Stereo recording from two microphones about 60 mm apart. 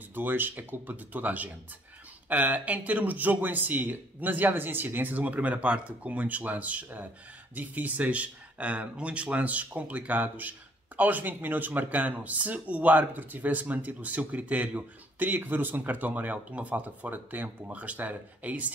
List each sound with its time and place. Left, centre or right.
0.1 s speech: right